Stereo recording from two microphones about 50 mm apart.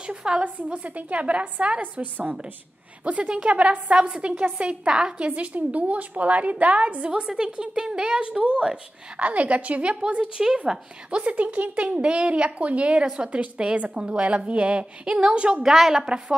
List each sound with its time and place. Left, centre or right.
0.0 s a woman's voice: centre
15.6 s a woman's voice: centre